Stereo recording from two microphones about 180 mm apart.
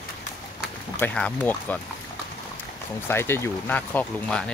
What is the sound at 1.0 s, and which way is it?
Speech, 10° left (ahead or behind).